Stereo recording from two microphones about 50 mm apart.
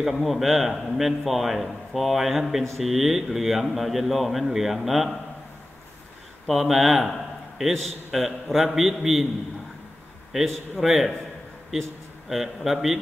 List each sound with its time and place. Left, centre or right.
0.0 s a man's voice: centre
6.4 s a man's voice: centre
10.3 s a man's voice: centre
12.6 s a man's voice: centre